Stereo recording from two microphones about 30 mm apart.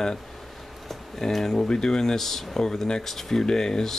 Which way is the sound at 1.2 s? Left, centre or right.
Centre.